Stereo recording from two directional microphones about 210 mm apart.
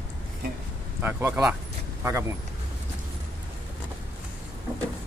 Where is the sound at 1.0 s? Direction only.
10° right (ahead or behind).